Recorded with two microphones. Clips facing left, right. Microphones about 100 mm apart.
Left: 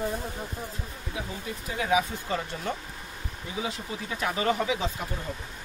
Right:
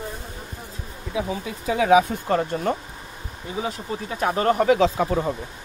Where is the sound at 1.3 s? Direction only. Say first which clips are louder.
Right 9 dB; 90° right.